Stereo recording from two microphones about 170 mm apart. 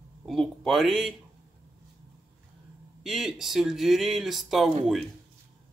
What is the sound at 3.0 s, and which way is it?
Speech, centre (ahead or behind).